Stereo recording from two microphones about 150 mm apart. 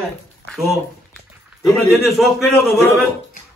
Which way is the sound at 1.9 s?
Centre (ahead or behind).